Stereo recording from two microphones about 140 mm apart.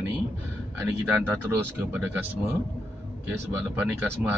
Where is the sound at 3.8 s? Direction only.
10° right (ahead or behind).